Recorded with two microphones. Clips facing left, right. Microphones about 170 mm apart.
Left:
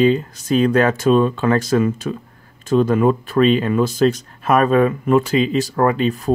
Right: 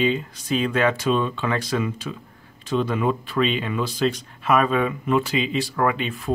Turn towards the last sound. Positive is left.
turn(degrees=40)  # may be behind; listen again after turning